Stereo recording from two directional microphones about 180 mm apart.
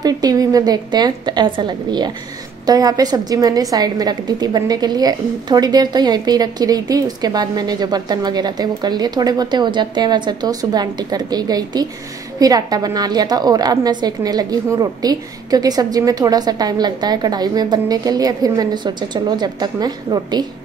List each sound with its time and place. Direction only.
0.0 s a woman's voice: 20° right (ahead or behind)